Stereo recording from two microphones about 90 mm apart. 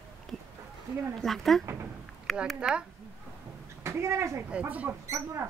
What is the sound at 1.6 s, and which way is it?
Speech, 25° right (ahead or behind).